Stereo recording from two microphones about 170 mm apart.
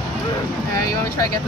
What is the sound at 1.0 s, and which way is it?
Vehicle, 20° left (ahead or behind).